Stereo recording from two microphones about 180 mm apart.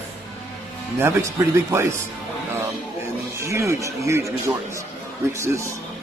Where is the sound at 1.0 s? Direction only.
15° right (ahead or behind).